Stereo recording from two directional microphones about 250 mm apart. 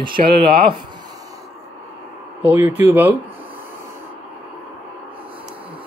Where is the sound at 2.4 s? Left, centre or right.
Centre.